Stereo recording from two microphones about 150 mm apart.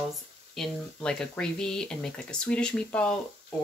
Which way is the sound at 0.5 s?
5° left (ahead or behind).